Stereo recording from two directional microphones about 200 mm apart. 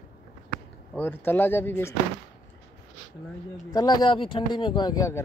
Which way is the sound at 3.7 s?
20° left (ahead or behind).